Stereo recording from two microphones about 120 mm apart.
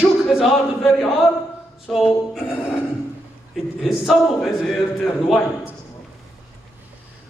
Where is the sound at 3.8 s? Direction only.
Centre (ahead or behind).